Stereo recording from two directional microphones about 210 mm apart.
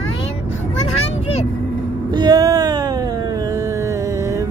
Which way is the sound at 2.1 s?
20° right (ahead or behind).